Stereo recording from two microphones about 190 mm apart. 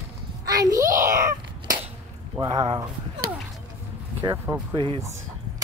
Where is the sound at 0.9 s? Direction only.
45° right (ahead or behind).